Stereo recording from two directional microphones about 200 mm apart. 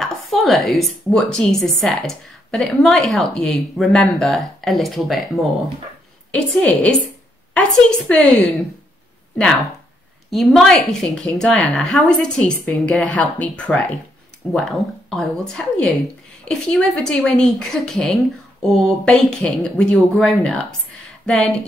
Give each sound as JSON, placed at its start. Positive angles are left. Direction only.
{"t": 0.0, "sound": "speech", "side_deg": 0}
{"t": 8.1, "sound": "speech", "side_deg": 5}
{"t": 10.3, "sound": "speech", "side_deg": 0}